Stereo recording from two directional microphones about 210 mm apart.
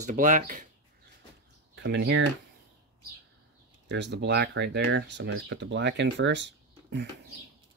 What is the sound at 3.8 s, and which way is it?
Speech, 55° right (ahead or behind).